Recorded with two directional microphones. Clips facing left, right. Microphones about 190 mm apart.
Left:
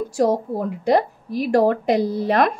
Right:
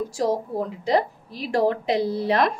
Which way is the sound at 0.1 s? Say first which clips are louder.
Left 8 dB; 55° left (ahead or behind).